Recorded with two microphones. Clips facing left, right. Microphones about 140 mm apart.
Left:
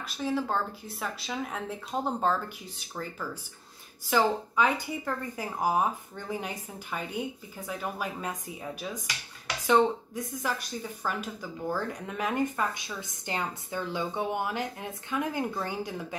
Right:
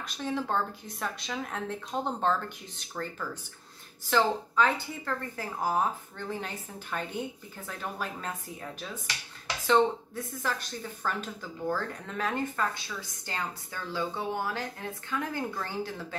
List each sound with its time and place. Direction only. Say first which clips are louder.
0.0 s speech: left 2 dB; 5° left (ahead or behind)